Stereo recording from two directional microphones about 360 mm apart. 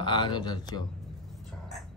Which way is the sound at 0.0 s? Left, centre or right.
Centre.